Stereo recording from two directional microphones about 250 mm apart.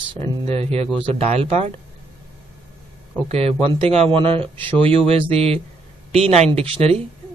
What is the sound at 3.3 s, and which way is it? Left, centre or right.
Speech, right.